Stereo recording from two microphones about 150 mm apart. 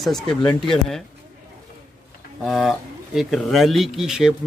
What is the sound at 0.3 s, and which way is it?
Speech, 30° left (ahead or behind).